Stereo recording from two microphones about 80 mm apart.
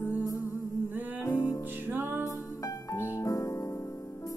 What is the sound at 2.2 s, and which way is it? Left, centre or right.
Music, left.